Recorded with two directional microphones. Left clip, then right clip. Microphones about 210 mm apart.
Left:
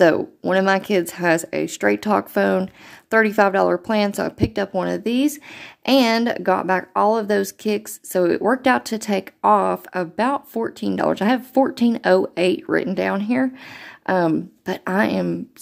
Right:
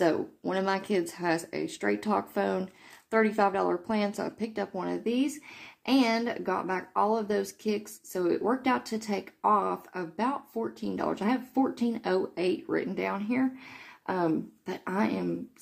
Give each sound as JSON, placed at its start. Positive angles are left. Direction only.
{"t": 0.0, "sound": "speech", "side_deg": 40}